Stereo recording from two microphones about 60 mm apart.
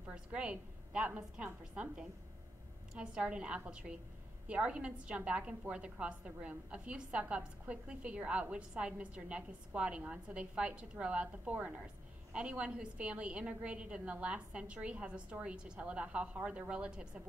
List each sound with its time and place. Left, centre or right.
0.1 s a woman's voice: centre